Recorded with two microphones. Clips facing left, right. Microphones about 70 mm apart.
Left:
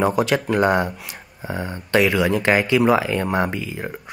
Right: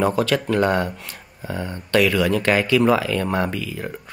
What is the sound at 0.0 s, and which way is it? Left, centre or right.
Speech, centre.